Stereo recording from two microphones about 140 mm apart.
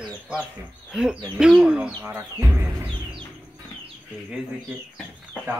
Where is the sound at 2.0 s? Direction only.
20° right (ahead or behind).